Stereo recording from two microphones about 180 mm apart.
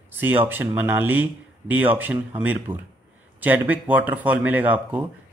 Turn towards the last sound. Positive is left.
turn(degrees=-10)  # may be behind; listen again after turning